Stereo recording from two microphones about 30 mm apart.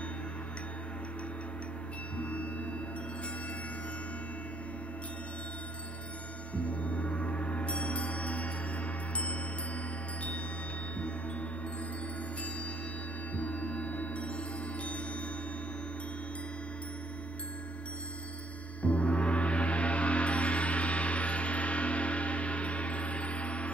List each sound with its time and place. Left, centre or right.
2.1 s gong: left
6.5 s gong: left
13.4 s gong: left
18.8 s gong: left